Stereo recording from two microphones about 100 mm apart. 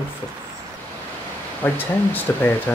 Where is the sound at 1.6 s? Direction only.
20° left (ahead or behind).